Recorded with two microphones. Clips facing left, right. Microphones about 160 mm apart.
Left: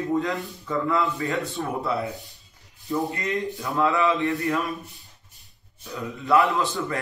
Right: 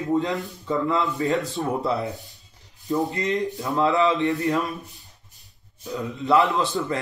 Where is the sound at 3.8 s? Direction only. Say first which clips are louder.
Right 2 dB; 35° right (ahead or behind).